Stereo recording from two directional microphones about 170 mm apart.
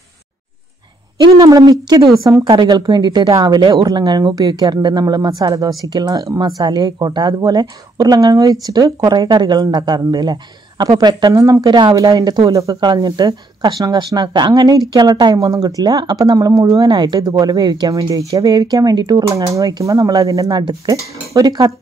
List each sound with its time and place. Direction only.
1.2 s a woman's voice: 25° right (ahead or behind)